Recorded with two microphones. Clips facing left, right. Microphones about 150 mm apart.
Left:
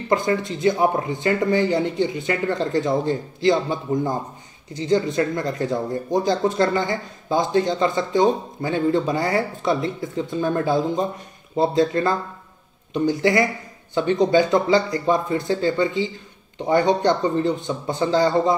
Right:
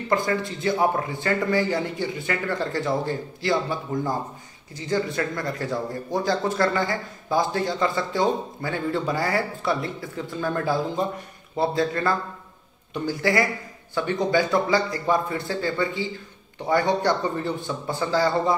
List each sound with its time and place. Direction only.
0.1 s speech: 20° left (ahead or behind)